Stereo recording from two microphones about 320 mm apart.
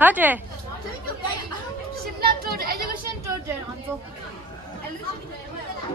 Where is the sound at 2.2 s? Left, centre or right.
Right.